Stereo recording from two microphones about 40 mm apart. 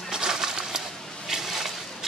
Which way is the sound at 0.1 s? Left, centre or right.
Centre.